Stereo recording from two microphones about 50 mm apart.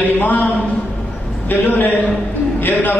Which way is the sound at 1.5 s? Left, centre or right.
Left.